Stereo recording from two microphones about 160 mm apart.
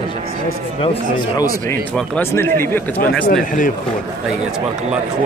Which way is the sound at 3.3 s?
60° left (ahead or behind).